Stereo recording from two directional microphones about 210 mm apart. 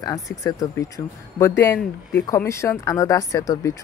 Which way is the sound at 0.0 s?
15° left (ahead or behind).